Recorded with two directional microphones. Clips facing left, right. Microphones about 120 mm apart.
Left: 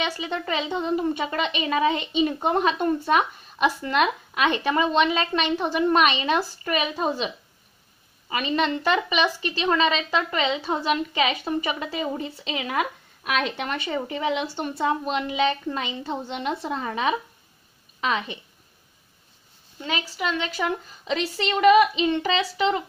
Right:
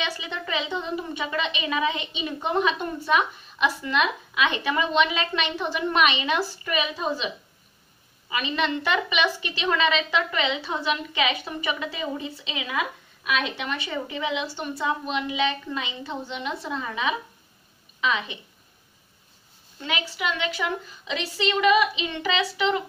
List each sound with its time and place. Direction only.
0.0 s a woman's voice: 45° left (ahead or behind)
8.3 s a woman's voice: 45° left (ahead or behind)
19.9 s a woman's voice: 35° left (ahead or behind)